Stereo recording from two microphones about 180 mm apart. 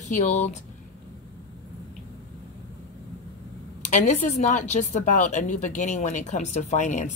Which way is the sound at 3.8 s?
45° left (ahead or behind).